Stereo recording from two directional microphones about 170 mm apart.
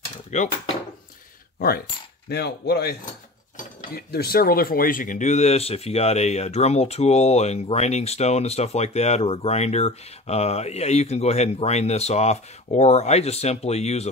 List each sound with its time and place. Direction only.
0.3 s speech: 45° left (ahead or behind)
1.6 s speech: 65° left (ahead or behind); by 14.0 s 40° left (ahead or behind)